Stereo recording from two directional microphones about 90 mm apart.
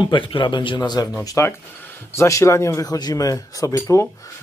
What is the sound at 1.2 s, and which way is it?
A man's voice, 35° left (ahead or behind).